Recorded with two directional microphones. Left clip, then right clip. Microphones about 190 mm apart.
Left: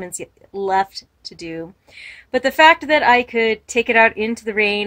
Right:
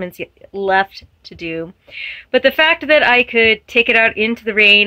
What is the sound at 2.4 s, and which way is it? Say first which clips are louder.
Speech: left 1 dB; 15° right (ahead or behind).